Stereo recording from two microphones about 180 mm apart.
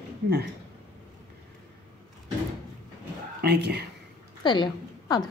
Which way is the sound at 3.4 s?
65° right (ahead or behind).